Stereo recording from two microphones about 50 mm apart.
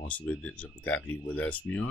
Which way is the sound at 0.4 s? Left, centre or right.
Left.